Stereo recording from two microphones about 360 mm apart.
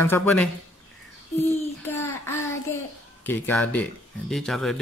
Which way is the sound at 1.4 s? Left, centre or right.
Centre.